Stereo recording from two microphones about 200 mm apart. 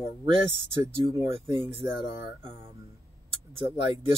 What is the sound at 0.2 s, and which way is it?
Speech, 25° right (ahead or behind).